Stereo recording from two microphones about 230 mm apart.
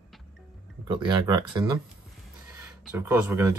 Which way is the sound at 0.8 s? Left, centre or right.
Centre.